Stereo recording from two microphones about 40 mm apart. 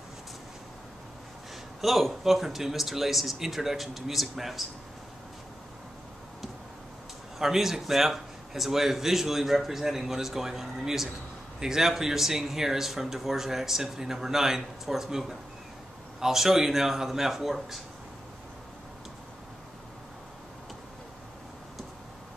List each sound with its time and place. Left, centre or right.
1.8 s speech: centre
7.3 s speech: centre